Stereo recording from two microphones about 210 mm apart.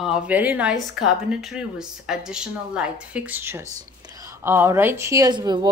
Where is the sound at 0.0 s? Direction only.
5° right (ahead or behind).